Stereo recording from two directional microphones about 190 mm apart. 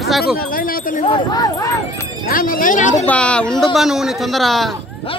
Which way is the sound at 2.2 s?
50° left (ahead or behind).